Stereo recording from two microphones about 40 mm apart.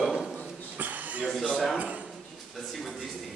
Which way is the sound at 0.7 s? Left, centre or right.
Right.